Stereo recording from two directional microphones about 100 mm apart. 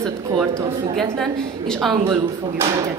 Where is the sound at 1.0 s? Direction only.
5° left (ahead or behind).